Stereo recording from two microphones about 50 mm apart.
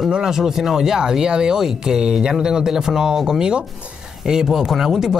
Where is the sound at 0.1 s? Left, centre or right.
Centre.